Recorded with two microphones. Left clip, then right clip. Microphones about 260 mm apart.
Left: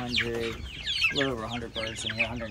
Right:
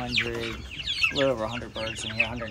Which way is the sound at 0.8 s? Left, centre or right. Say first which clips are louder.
Right 1 dB; left.